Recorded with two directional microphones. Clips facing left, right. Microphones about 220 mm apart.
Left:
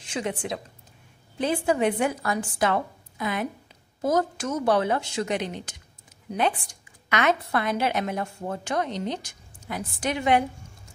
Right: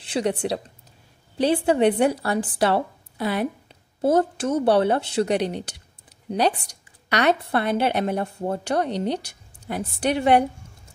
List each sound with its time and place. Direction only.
0.0 s a woman's voice: 35° right (ahead or behind)
7.1 s a woman's voice: 35° right (ahead or behind)